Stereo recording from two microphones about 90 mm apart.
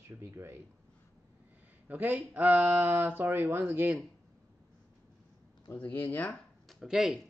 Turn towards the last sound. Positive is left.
turn(degrees=-5)  # may be behind; listen again after turning